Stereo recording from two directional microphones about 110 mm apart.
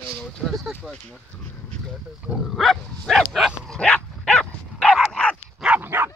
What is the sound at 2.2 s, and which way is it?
Pig, centre (ahead or behind).